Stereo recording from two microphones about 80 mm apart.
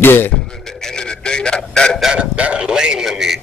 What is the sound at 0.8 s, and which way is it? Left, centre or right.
Radio, centre.